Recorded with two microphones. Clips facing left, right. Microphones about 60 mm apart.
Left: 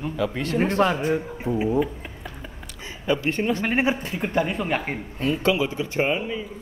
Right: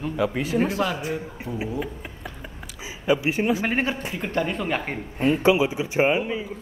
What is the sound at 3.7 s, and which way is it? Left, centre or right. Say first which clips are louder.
A man's voice: left 2 dB; centre.